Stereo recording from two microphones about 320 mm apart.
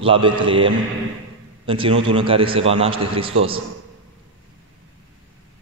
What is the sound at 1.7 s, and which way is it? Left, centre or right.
A man's voice, centre.